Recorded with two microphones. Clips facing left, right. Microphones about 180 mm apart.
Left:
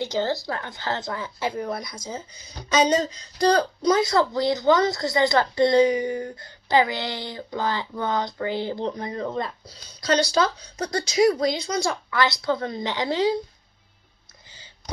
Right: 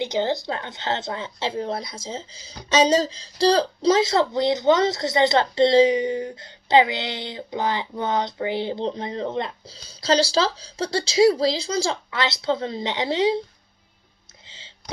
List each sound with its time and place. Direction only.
0.0 s a woman's voice: 20° right (ahead or behind)